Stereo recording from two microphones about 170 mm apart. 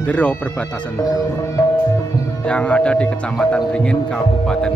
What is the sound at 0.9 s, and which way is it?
Music, 20° left (ahead or behind).